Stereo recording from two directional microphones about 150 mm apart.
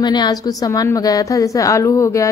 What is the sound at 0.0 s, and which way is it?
A woman's voice, 30° left (ahead or behind).